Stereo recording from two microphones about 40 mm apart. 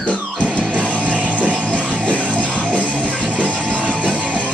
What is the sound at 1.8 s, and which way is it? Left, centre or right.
Music, left.